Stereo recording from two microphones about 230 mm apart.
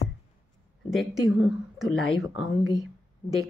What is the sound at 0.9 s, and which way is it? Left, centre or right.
Speech, centre.